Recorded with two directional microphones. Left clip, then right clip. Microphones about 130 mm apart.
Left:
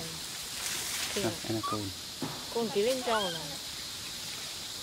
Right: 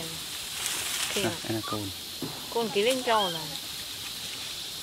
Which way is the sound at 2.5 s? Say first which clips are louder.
Right 4 dB; 35° right (ahead or behind).